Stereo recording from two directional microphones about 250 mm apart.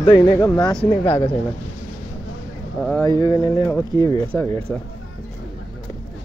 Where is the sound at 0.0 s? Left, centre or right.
Centre.